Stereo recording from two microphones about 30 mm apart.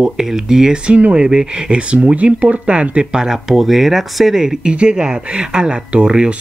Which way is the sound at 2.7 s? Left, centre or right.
Right.